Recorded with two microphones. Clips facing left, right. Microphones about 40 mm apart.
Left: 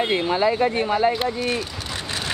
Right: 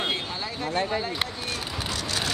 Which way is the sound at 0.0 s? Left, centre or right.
Left.